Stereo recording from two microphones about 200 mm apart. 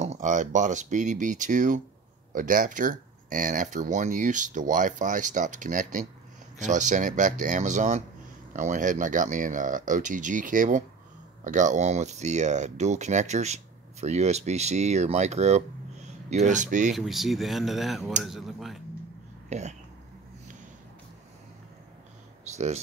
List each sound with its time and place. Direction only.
0.0 s speech: 35° right (ahead or behind)
16.9 s speech: centre (ahead or behind)
19.5 s speech: 35° right (ahead or behind)